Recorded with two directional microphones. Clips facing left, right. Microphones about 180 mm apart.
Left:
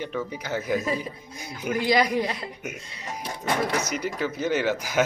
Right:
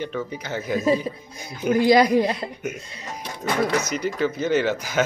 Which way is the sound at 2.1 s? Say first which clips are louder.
Right 6 dB; 25° right (ahead or behind).